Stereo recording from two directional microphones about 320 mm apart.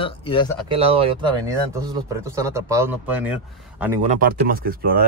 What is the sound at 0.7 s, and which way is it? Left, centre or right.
Speech, centre.